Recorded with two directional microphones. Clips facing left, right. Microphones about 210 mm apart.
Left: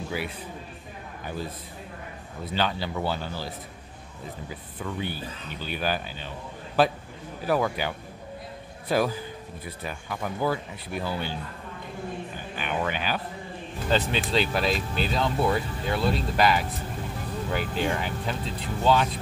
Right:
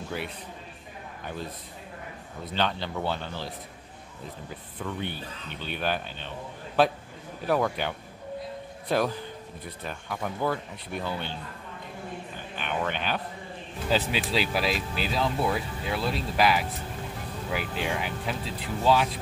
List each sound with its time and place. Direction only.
0.1 s a man's voice: 5° left (ahead or behind)
2.5 s speech: 5° left (ahead or behind)
12.5 s speech: 5° left (ahead or behind)